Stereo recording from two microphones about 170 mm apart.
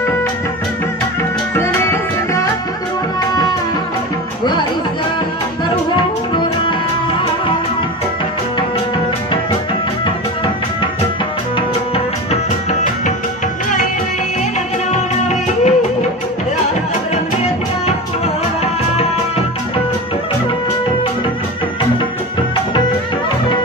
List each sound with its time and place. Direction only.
1.6 s music: 15° left (ahead or behind)
10.0 s music: 30° left (ahead or behind)
14.9 s music: 40° left (ahead or behind)